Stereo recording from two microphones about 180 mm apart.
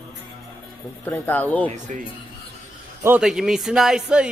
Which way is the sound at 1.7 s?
45° right (ahead or behind).